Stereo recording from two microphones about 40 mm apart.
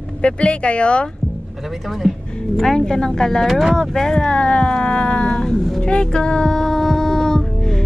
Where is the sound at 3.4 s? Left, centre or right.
Centre.